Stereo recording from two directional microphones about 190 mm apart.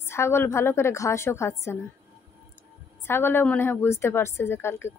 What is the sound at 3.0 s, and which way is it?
A woman's voice, 10° left (ahead or behind).